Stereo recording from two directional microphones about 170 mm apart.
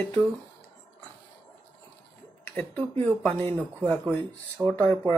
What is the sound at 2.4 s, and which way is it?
Speech, 10° left (ahead or behind).